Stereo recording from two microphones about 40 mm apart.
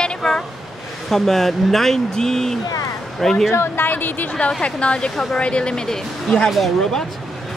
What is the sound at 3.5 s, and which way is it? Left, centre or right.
Speech, left.